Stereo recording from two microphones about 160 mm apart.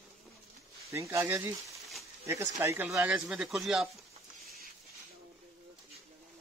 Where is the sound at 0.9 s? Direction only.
20° right (ahead or behind).